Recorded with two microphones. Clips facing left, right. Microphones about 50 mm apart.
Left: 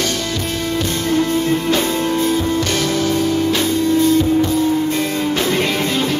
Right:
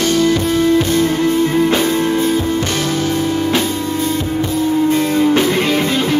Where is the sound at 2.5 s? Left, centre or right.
Right.